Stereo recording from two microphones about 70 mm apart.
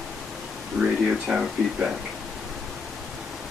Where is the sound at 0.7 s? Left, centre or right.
Centre.